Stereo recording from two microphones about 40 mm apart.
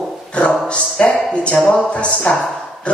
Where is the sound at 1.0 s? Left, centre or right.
Left.